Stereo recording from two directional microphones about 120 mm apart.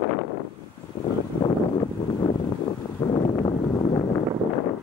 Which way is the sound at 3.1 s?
45° left (ahead or behind).